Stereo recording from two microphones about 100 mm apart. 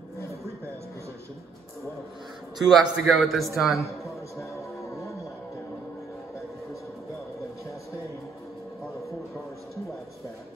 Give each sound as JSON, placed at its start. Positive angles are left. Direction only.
{"t": 2.6, "sound": "a man's voice", "side_deg": 0}
{"t": 4.4, "sound": "music", "side_deg": 30}